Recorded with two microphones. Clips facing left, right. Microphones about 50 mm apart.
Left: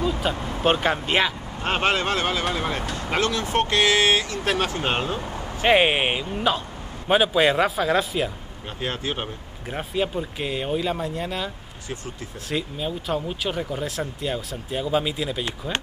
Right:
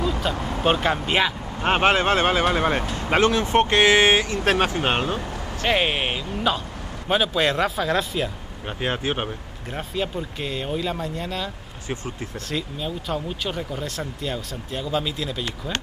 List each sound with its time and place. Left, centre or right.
0.0 s vehicle: centre
0.7 s speech: centre
1.6 s speech: right
5.6 s speech: centre
8.6 s speech: right
9.7 s speech: centre